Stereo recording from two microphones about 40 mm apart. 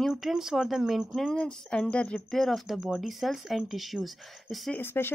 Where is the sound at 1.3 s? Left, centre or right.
Left.